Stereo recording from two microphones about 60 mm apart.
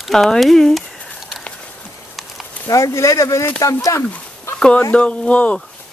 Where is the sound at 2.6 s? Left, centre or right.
Left.